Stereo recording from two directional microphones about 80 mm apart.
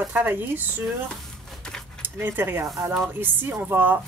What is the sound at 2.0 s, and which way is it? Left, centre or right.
Speech, right.